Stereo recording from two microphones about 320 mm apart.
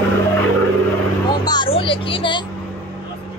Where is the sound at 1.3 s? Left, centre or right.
Centre.